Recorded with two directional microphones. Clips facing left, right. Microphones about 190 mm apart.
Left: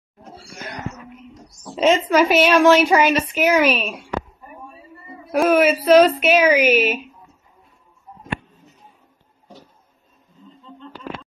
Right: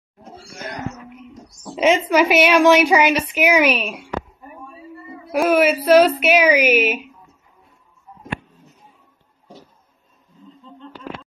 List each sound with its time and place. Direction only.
1.6 s a woman's voice: 10° right (ahead or behind)
5.3 s a woman's voice: 10° right (ahead or behind)